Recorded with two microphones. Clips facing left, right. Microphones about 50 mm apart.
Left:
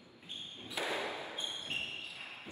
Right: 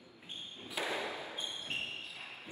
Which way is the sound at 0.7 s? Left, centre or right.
Left.